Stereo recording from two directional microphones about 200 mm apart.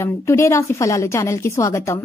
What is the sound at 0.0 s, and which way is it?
A woman's voice, 15° left (ahead or behind).